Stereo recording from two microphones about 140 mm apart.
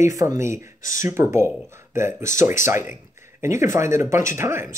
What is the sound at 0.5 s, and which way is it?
Speech, 70° left (ahead or behind).